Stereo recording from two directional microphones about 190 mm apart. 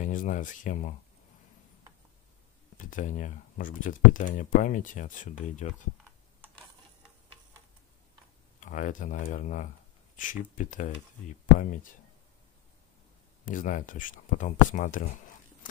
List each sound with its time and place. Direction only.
0.0 s speech: 45° left (ahead or behind)
2.9 s speech: 40° left (ahead or behind)
8.5 s speech: 45° left (ahead or behind)
13.5 s speech: 45° left (ahead or behind)